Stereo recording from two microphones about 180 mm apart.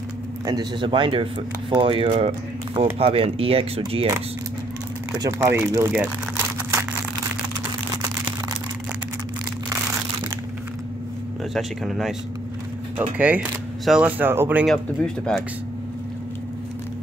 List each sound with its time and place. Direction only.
0.5 s speech: 25° right (ahead or behind)
5.2 s speech: 15° right (ahead or behind)
11.5 s speech: centre (ahead or behind)
13.2 s speech: 10° right (ahead or behind)
14.7 s speech: 5° left (ahead or behind)